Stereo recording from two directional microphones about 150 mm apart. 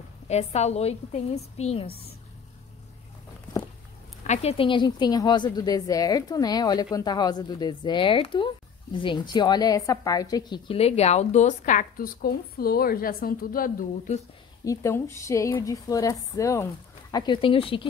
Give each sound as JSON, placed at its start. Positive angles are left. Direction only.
{"t": 0.3, "sound": "a woman's voice", "side_deg": 45}
{"t": 4.2, "sound": "a woman's voice", "side_deg": 45}
{"t": 10.7, "sound": "speech", "side_deg": 40}
{"t": 14.6, "sound": "a woman's voice", "side_deg": 20}
{"t": 17.1, "sound": "speech", "side_deg": 35}